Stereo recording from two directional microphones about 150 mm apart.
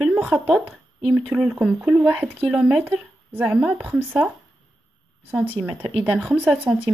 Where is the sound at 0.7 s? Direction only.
15° right (ahead or behind).